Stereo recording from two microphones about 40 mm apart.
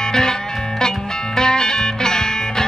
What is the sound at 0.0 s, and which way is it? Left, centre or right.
Music, centre.